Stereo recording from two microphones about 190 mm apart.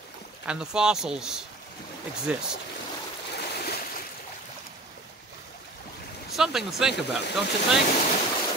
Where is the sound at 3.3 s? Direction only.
55° left (ahead or behind).